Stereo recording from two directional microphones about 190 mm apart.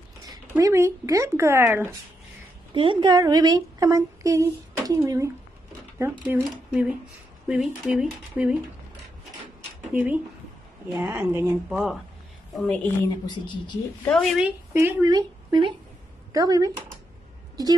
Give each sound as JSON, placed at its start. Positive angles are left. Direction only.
{"t": 0.5, "sound": "a woman's voice", "side_deg": -15}
{"t": 2.7, "sound": "a woman's voice", "side_deg": -25}
{"t": 9.9, "sound": "a woman's voice", "side_deg": -10}
{"t": 11.7, "sound": "a woman's voice", "side_deg": 0}
{"t": 14.0, "sound": "speech", "side_deg": 0}
{"t": 14.7, "sound": "speech", "side_deg": -15}